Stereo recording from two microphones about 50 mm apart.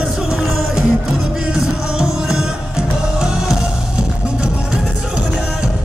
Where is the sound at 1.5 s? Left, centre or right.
Centre.